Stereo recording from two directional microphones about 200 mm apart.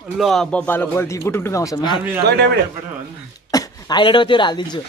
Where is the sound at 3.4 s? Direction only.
20° left (ahead or behind).